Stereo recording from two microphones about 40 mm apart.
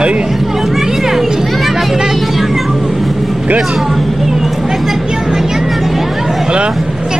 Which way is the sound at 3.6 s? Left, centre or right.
Centre.